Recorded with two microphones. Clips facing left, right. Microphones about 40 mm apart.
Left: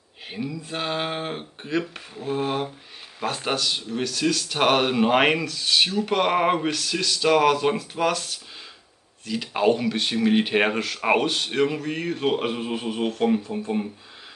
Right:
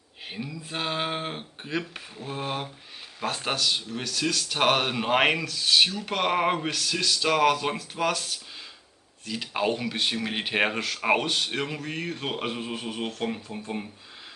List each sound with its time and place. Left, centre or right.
0.3 s speech: centre